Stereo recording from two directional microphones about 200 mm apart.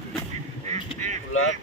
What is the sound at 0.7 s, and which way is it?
Honk, 35° right (ahead or behind).